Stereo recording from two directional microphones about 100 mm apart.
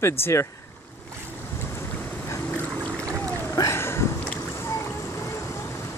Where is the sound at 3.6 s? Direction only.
25° left (ahead or behind).